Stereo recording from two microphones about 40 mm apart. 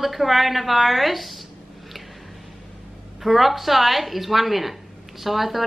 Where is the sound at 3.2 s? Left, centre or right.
Centre.